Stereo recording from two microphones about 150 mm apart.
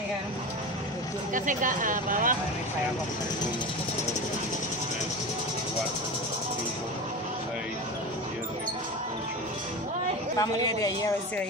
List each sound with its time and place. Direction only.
1.3 s speech: 60° right (ahead or behind)
10.4 s a man's voice: 25° left (ahead or behind)